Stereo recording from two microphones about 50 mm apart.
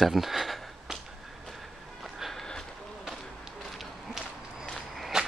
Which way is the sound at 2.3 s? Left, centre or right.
Centre.